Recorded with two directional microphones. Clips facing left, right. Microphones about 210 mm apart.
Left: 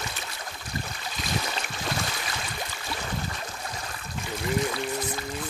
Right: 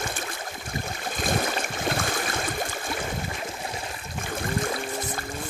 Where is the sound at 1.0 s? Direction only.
50° right (ahead or behind).